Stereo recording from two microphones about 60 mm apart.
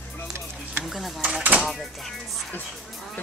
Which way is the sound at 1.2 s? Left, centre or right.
Centre.